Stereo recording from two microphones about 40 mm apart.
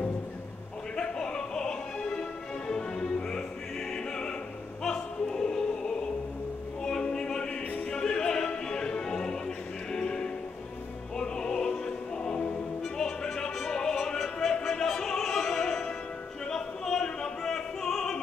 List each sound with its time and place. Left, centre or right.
0.9 s music: centre
4.8 s opera: centre
6.8 s music: centre
11.1 s opera: centre
12.2 s music: left
12.9 s music: centre
16.4 s opera: centre